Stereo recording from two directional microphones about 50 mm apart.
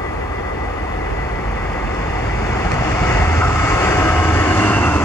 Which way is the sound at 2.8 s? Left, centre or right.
Left.